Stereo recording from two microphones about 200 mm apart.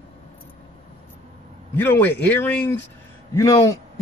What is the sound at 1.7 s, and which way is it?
A man's voice, 10° left (ahead or behind).